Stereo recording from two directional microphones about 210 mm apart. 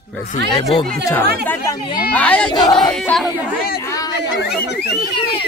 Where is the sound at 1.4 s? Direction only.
10° left (ahead or behind).